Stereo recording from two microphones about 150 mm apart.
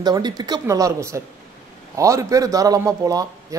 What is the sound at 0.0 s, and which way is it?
A man's voice, 25° right (ahead or behind).